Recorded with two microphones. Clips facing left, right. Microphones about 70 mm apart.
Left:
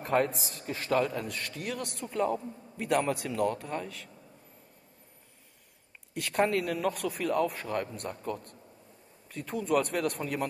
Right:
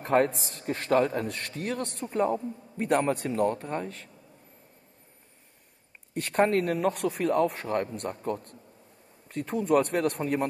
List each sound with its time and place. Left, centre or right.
0.0 s a man's voice: right
2.0 s a woman's voice: right
6.1 s a man's voice: right